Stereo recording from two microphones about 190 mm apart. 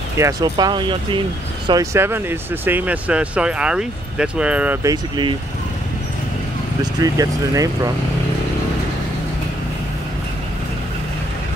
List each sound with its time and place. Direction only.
0.2 s speech: 20° right (ahead or behind)
4.8 s speech: 25° right (ahead or behind)
6.8 s speech: 20° right (ahead or behind)